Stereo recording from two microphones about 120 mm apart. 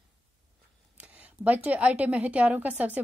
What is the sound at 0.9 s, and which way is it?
A woman's voice, 10° right (ahead or behind).